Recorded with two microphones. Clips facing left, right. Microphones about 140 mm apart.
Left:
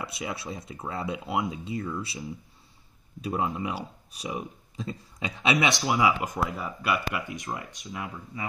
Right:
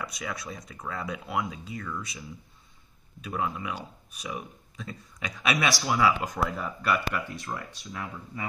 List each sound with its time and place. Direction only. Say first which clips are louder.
0.0 s speech: left 2 dB; 25° left (ahead or behind); by 8.5 s 10° left (ahead or behind)